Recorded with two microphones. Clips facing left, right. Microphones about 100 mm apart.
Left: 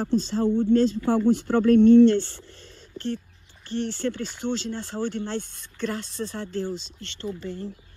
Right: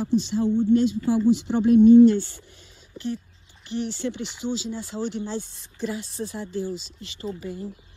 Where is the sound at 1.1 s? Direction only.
60° left (ahead or behind).